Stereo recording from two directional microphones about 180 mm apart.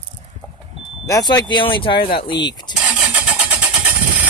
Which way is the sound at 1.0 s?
20° left (ahead or behind).